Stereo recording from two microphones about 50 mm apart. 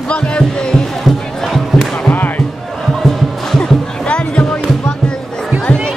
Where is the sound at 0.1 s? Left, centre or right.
Centre.